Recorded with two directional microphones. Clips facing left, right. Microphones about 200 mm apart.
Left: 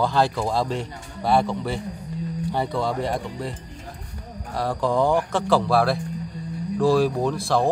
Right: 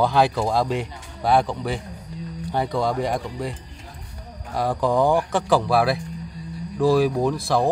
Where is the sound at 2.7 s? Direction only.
15° right (ahead or behind).